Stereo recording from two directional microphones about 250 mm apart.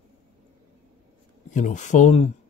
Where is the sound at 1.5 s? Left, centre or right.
Left.